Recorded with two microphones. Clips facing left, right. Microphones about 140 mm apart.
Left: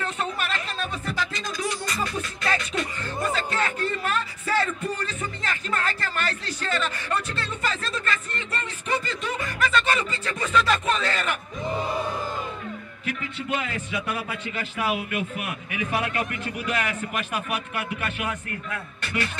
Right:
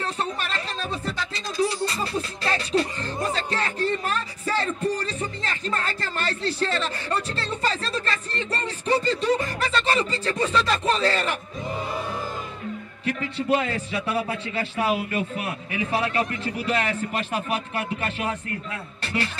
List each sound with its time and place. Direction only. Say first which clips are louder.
0.0 s music: even; 35° right (ahead or behind)
13.0 s a man's voice: right 5 dB; 35° right (ahead or behind)